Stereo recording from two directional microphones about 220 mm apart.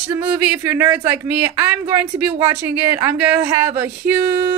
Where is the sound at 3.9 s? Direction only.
45° right (ahead or behind).